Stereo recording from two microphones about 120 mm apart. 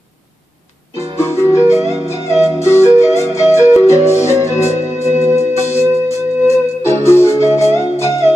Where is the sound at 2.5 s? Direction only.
20° left (ahead or behind).